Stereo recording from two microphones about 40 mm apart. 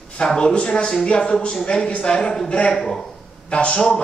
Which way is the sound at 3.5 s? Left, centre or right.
Left.